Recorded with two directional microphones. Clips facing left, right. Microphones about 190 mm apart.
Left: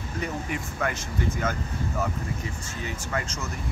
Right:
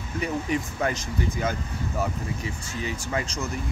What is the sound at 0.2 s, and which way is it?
Speech, 20° right (ahead or behind).